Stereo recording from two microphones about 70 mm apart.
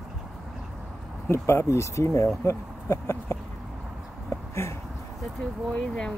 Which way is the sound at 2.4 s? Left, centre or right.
Left.